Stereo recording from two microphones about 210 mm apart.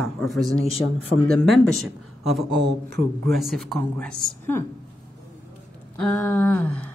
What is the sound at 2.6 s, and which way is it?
Speech, 55° right (ahead or behind).